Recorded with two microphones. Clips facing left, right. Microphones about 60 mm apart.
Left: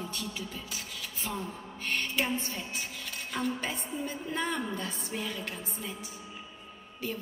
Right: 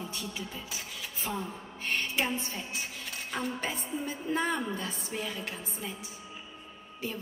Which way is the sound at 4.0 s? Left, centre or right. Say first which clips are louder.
Right 3 dB; right.